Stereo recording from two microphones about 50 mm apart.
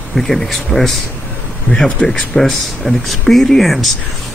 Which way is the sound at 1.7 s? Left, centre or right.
Left.